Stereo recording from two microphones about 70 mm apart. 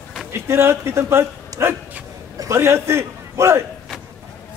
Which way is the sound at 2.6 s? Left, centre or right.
Right.